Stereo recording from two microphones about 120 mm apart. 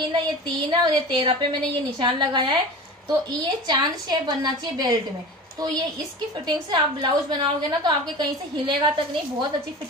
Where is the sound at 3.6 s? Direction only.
35° right (ahead or behind).